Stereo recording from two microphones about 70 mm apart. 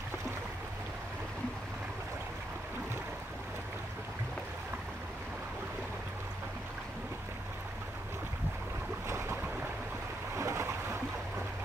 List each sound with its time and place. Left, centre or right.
9.0 s boat: right